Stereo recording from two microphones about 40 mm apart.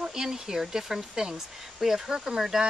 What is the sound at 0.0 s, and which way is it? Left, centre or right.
Speech, centre.